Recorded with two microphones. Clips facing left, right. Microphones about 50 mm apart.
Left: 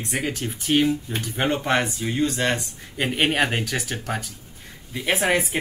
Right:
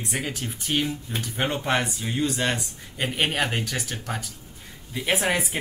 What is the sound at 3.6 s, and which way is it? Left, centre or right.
Speech, centre.